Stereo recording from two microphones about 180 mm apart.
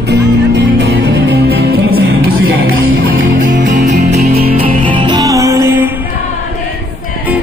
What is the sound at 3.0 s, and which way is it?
Music, 50° right (ahead or behind).